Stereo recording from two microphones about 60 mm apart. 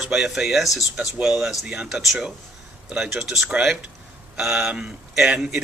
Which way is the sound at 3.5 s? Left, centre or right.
Centre.